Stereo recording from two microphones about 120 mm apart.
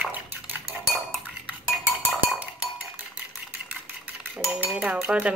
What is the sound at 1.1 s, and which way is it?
Dishes, 5° right (ahead or behind).